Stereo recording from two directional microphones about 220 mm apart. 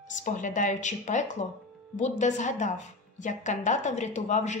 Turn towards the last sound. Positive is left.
turn(degrees=30)  # may be behind; listen again after turning